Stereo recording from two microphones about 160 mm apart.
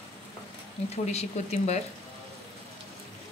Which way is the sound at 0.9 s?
40° left (ahead or behind).